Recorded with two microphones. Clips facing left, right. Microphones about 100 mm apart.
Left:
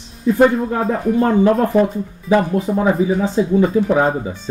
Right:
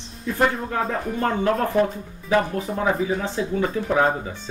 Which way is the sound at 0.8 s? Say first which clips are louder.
Left 8 dB; 5° left (ahead or behind).